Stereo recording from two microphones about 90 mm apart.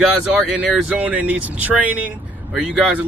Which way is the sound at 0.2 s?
5° right (ahead or behind).